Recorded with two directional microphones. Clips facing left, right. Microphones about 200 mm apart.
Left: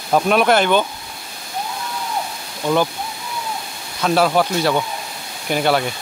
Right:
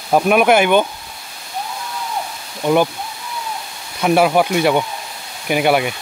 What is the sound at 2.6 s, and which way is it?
Speech, 15° right (ahead or behind).